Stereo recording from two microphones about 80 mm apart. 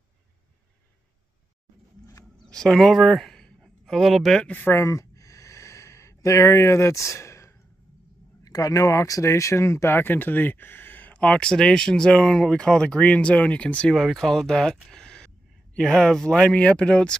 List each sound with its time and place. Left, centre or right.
2.5 s speech: centre
4.4 s a sound: left
8.5 s speech: left; by 13.9 s centre
13.9 s speech: centre